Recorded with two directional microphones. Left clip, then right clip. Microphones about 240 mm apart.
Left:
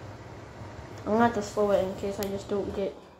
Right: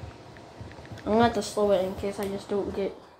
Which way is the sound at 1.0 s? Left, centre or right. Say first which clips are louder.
Right 2 dB; centre.